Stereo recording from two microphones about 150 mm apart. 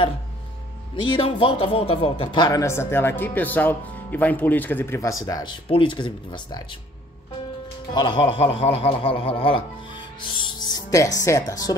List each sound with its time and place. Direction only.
1.2 s speech: 35° left (ahead or behind); by 5.1 s 15° left (ahead or behind)
5.2 s speech: 30° left (ahead or behind)